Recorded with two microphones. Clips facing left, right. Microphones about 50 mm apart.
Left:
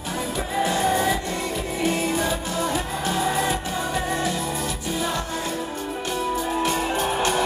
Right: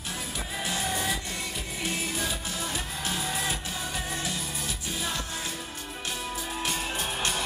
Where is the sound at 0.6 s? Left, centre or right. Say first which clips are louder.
Left 10 dB; centre.